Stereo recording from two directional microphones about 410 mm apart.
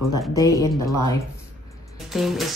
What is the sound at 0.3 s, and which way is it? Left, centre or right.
Speech, centre.